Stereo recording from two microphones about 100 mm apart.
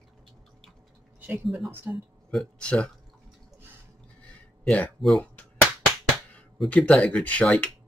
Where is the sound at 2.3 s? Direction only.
5° left (ahead or behind).